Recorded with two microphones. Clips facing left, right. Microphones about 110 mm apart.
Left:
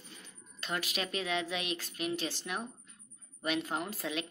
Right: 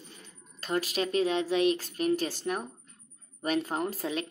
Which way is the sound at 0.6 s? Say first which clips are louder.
Right 7 dB; 40° right (ahead or behind).